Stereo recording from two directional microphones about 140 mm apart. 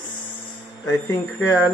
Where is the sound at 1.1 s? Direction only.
15° left (ahead or behind).